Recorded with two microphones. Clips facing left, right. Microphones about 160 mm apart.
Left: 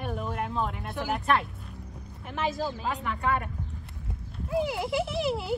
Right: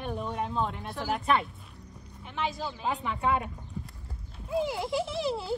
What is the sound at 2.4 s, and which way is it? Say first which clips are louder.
Speech: left 3 dB; 40° left (ahead or behind).